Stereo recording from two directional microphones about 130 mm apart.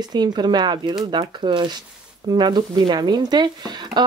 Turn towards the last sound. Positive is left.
turn(degrees=-35)  # may be behind; listen again after turning